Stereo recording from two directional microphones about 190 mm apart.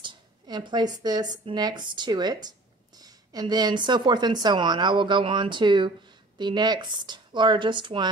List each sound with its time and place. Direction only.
0.0 s speech: 25° right (ahead or behind)